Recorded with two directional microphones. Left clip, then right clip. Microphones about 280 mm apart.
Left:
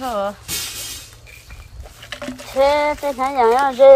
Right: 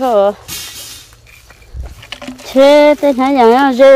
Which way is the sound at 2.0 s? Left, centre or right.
Centre.